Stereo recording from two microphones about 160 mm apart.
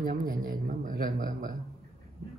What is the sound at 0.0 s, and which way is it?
A man's voice, 60° right (ahead or behind).